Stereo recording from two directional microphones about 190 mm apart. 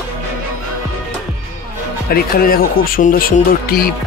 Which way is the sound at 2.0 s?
50° left (ahead or behind).